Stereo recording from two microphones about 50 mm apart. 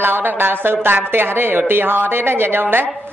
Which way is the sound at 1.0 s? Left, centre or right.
Right.